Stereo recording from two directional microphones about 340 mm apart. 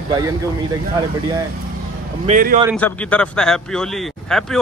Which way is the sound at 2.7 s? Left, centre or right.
Centre.